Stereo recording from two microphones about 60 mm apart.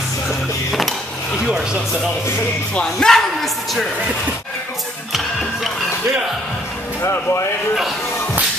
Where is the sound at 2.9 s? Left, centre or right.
Centre.